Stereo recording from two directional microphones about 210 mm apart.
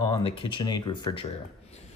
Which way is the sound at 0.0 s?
20° left (ahead or behind).